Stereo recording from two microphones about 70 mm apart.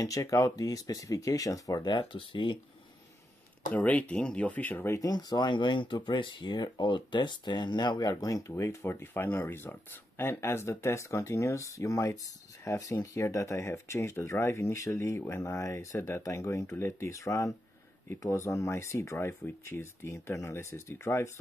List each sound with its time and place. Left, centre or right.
0.0 s speech: left
3.7 s speech: left
5.0 s speech: left
5.9 s speech: left